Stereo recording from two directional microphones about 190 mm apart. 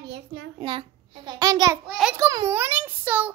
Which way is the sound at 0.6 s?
25° right (ahead or behind).